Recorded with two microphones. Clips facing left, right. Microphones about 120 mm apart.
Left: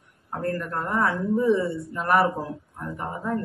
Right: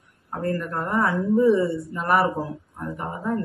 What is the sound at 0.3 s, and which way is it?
Speech, 5° right (ahead or behind).